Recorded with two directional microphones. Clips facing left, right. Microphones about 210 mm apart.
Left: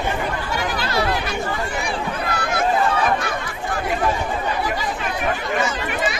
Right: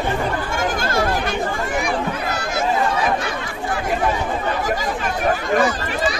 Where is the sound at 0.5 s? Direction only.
45° right (ahead or behind).